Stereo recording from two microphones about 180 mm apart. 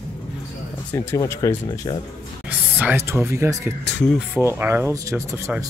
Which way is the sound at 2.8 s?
10° right (ahead or behind).